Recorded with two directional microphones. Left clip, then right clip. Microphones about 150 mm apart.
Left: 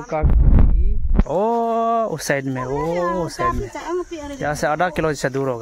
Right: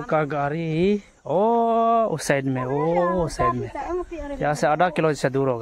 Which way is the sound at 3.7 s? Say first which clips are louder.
Left 3 dB; 90° left.